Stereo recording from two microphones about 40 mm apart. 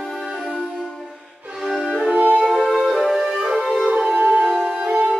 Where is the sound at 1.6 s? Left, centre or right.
Centre.